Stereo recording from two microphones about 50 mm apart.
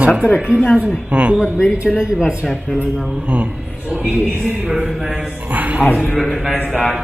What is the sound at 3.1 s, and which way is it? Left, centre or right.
A man's voice, right.